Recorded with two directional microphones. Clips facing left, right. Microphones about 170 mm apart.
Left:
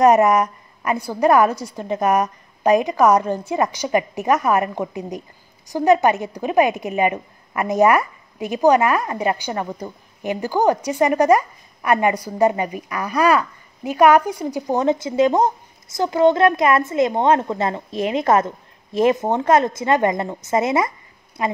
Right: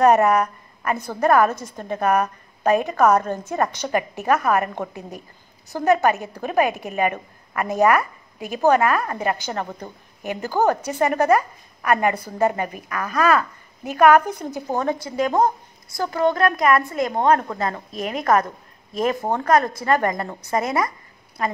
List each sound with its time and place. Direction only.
0.0 s a woman's voice: 15° left (ahead or behind)